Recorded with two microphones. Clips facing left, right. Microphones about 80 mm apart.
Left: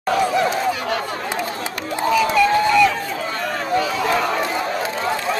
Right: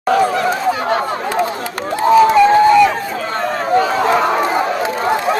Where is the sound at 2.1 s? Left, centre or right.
Right.